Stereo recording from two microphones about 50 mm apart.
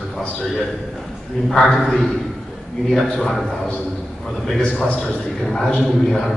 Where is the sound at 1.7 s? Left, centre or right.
Centre.